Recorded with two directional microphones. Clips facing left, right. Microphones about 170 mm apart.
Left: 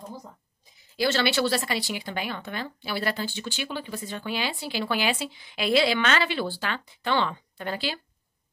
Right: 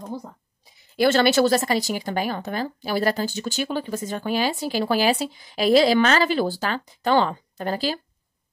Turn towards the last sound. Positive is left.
turn(degrees=-40)  # may be behind; listen again after turning